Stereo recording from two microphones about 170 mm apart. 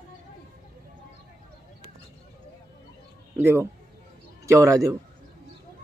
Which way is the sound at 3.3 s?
15° right (ahead or behind).